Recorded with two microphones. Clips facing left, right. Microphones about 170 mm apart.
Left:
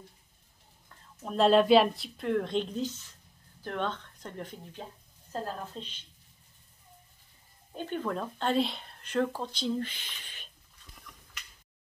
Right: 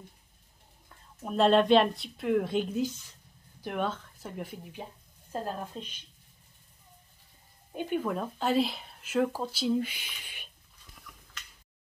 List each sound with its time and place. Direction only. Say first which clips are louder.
0.8 s a woman's voice: right 1 dB; 5° right (ahead or behind)
7.7 s speech: right 2 dB; 10° right (ahead or behind)